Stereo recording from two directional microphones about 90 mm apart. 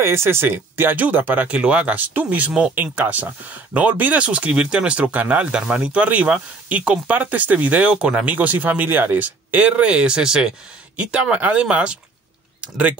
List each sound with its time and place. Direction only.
0.0 s speech: 30° right (ahead or behind); by 12.0 s 10° right (ahead or behind)